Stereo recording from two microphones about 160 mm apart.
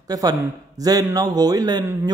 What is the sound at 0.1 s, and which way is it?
A man's voice, 25° right (ahead or behind).